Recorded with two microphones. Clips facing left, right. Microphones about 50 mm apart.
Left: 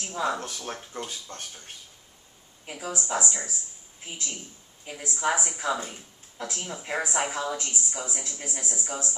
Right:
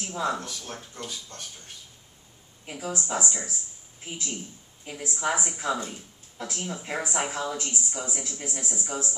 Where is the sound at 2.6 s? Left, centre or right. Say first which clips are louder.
Right 1 dB; centre.